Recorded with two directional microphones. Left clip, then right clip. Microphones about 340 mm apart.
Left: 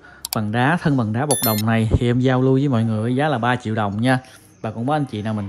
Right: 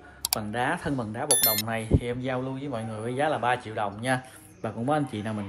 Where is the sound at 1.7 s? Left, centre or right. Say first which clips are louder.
Left 8 dB; left.